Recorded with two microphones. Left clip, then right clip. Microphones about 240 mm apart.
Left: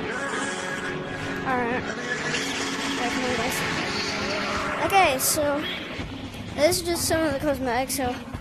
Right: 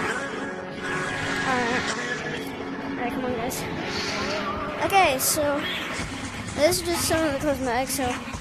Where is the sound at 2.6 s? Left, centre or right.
Left.